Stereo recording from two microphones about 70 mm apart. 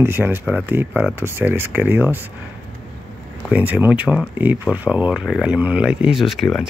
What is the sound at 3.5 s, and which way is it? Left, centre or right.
Speech, right.